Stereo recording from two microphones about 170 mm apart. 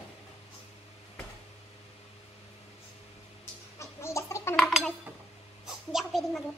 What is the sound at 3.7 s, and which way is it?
Gargling, 15° left (ahead or behind).